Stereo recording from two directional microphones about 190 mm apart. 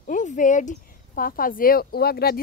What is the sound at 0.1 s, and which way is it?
A woman's voice, 40° left (ahead or behind).